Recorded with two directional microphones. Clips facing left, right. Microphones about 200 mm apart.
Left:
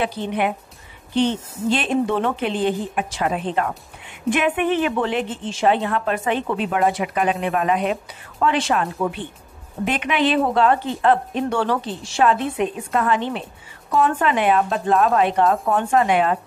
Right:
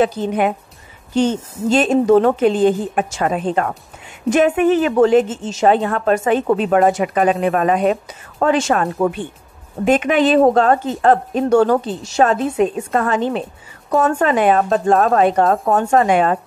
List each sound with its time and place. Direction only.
0.0 s a woman's voice: 40° right (ahead or behind)